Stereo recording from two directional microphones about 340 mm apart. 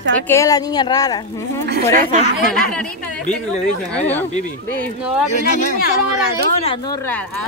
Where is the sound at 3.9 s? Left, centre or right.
Centre.